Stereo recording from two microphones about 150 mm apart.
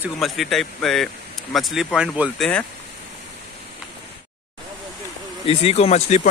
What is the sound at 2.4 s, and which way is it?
Speech, 10° left (ahead or behind).